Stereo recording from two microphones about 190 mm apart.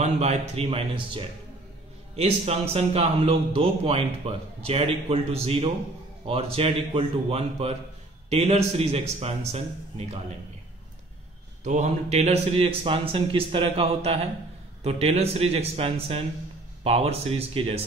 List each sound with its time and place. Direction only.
0.0 s a man's voice: 35° right (ahead or behind)
11.6 s a man's voice: 35° right (ahead or behind)